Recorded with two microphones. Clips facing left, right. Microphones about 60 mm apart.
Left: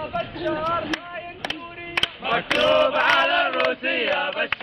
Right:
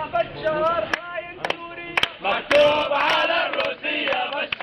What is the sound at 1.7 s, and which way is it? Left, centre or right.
Music, centre.